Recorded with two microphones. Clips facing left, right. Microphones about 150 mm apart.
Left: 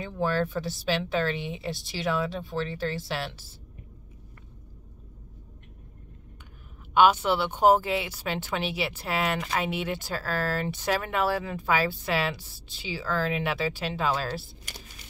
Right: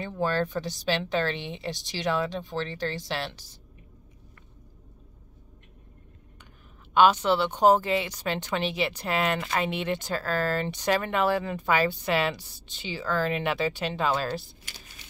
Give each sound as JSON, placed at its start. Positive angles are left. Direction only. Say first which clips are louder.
{"t": 0.0, "sound": "speech", "louder": "even", "side_deg": 5}
{"t": 6.9, "sound": "a woman's voice", "louder": "even", "side_deg": 10}